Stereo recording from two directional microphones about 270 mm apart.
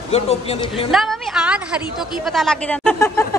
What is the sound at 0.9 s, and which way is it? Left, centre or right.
A woman's voice, centre.